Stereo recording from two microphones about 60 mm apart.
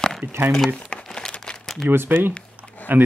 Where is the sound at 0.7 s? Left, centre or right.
Centre.